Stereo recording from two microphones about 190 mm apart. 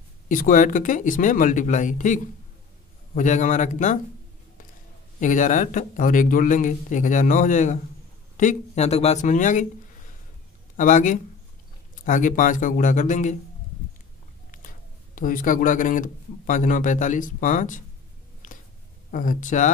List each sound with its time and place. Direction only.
0.3 s speech: 45° left (ahead or behind)
5.2 s speech: 40° left (ahead or behind)
10.8 s speech: 40° left (ahead or behind)
14.5 s speech: 45° left (ahead or behind)
18.4 s a sound: 45° left (ahead or behind)
19.0 s speech: 45° left (ahead or behind)